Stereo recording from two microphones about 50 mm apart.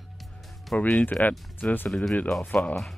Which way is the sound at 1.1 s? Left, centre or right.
Left.